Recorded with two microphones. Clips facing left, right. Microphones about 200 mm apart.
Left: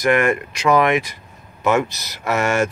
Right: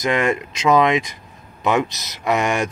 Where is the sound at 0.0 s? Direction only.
20° right (ahead or behind).